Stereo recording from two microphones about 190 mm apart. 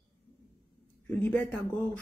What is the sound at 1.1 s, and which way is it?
Speech, 10° left (ahead or behind).